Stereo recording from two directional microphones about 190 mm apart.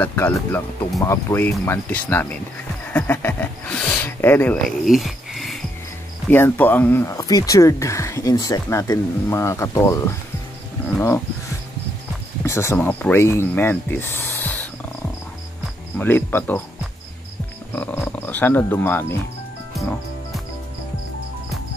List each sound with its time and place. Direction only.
0.0 s speech: 10° left (ahead or behind)
4.6 s a sound: centre (ahead or behind)
6.2 s speech: 10° left (ahead or behind)
12.4 s speech: 15° left (ahead or behind)
16.0 s speech: 10° left (ahead or behind)
17.7 s speech: 10° left (ahead or behind)